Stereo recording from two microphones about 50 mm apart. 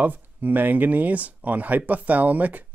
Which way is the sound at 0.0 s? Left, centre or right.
Right.